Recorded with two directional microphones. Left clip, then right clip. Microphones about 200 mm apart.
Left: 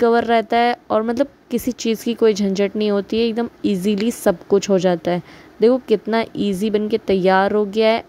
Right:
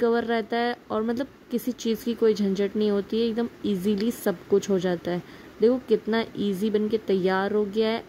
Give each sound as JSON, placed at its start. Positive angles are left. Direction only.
{"t": 0.0, "sound": "a woman's voice", "side_deg": 35}